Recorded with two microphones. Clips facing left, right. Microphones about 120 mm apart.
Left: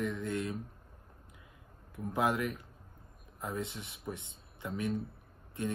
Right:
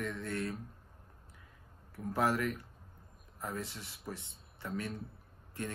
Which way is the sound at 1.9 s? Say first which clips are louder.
Left 1 dB; 20° left (ahead or behind).